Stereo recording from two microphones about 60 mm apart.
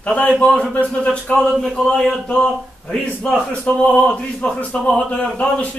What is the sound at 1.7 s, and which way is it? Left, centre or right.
A man's voice, centre.